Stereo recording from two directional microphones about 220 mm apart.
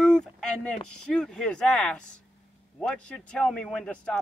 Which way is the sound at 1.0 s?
Centre (ahead or behind).